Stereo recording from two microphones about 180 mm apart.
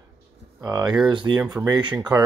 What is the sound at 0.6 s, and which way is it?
Speech, 20° right (ahead or behind).